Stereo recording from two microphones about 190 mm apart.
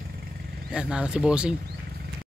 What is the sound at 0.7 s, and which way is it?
Speech, 5° right (ahead or behind).